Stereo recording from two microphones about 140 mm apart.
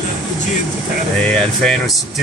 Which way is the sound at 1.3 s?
5° left (ahead or behind).